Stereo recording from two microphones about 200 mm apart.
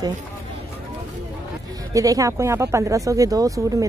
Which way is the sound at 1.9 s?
15° right (ahead or behind).